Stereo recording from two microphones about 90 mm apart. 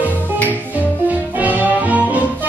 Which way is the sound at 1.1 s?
15° right (ahead or behind).